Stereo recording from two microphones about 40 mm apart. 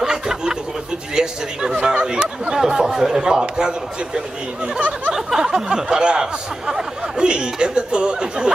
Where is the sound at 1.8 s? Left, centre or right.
Right.